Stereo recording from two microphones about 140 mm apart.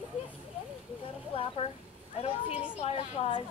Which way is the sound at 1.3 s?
40° left (ahead or behind).